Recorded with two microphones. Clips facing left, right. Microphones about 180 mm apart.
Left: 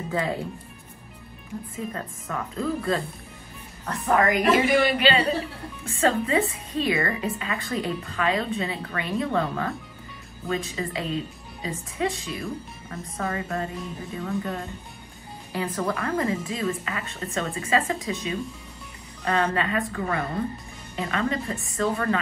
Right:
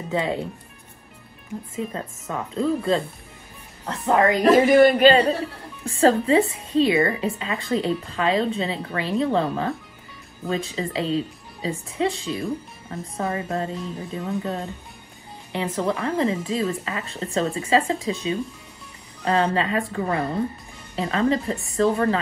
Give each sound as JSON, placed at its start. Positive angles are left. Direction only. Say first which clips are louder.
{"t": 0.1, "sound": "speech", "louder": "right 3 dB", "side_deg": -20}
{"t": 2.0, "sound": "a woman's voice", "louder": "right 2 dB", "side_deg": -25}